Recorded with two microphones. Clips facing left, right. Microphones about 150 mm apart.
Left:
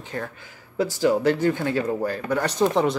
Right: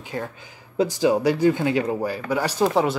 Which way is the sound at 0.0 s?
15° right (ahead or behind).